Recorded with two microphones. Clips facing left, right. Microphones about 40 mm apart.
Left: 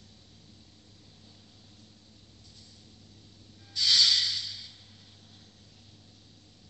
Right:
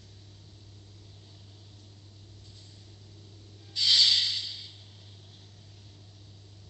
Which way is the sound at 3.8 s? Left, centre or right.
Centre.